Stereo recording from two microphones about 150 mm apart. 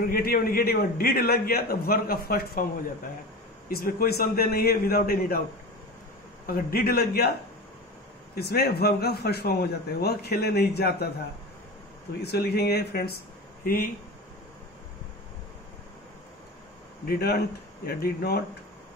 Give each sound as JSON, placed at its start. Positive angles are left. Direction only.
{"t": 0.1, "sound": "a man's voice", "side_deg": 80}
{"t": 3.6, "sound": "a man's voice", "side_deg": 85}
{"t": 6.4, "sound": "a man's voice", "side_deg": 80}
{"t": 8.4, "sound": "a man's voice", "side_deg": 90}
{"t": 12.2, "sound": "a man's voice", "side_deg": 90}
{"t": 13.7, "sound": "speech", "side_deg": 75}
{"t": 17.0, "sound": "a man's voice", "side_deg": 90}